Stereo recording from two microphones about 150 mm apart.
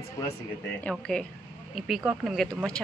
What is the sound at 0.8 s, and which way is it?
Speech, 5° left (ahead or behind).